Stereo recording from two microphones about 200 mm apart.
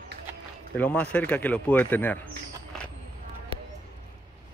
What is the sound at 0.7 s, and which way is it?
Speech, 10° left (ahead or behind).